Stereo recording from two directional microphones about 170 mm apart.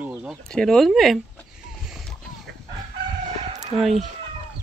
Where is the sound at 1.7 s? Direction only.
5° right (ahead or behind).